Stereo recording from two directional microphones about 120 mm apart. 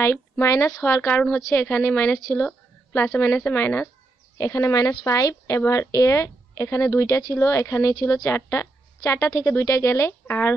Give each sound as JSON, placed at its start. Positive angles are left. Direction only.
{"t": 0.0, "sound": "a woman's voice", "side_deg": 25}
{"t": 1.1, "sound": "a woman's voice", "side_deg": 10}
{"t": 2.3, "sound": "a sound", "side_deg": 15}
{"t": 3.4, "sound": "a woman's voice", "side_deg": 20}